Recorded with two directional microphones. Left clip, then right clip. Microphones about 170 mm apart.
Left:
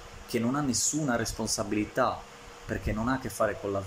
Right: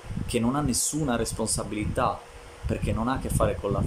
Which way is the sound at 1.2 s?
30° right (ahead or behind).